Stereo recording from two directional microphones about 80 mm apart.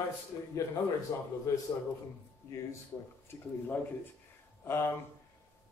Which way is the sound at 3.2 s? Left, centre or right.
Left.